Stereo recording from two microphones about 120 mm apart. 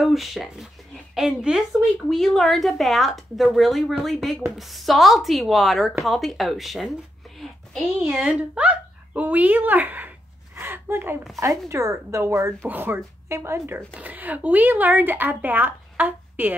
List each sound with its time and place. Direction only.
0.0 s a woman's voice: centre (ahead or behind)
8.1 s a woman's voice: 10° right (ahead or behind)